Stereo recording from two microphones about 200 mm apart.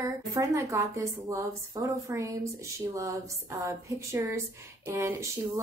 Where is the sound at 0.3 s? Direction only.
15° right (ahead or behind).